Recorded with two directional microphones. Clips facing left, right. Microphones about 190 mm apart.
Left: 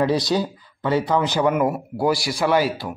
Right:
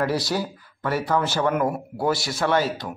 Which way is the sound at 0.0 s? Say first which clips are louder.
Left 4 dB; 20° left (ahead or behind).